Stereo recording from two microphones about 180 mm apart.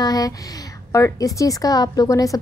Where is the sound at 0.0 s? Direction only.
20° left (ahead or behind).